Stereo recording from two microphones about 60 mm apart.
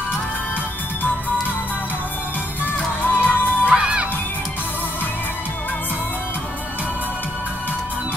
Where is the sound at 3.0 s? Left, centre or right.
Left.